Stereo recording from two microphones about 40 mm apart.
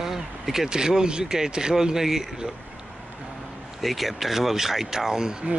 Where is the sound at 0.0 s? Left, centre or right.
Centre.